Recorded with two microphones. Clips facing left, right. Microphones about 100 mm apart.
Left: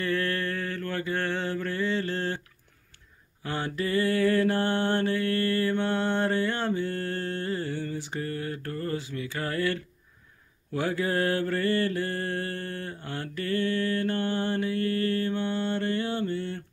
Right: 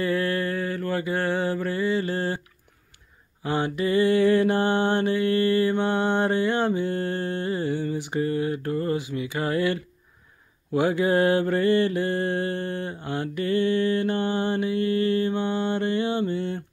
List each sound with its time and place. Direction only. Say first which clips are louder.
0.0 s mantra: right 4 dB; 10° right (ahead or behind)
3.4 s mantra: right 6 dB; 15° right (ahead or behind)